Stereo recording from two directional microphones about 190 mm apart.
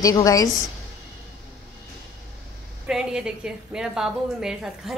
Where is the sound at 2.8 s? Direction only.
5° right (ahead or behind).